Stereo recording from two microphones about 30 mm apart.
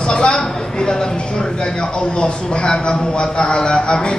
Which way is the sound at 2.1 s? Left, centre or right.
Left.